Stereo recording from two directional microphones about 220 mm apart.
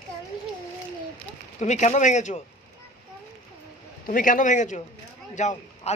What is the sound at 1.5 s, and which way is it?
Speech, 30° left (ahead or behind).